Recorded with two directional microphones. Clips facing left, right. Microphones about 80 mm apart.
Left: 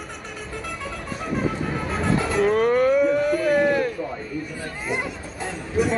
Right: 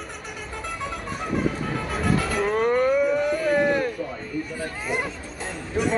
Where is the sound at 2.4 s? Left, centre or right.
Centre.